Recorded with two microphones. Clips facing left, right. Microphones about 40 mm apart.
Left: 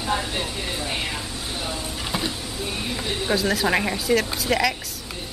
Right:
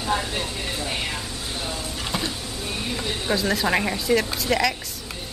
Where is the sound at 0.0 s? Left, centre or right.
Centre.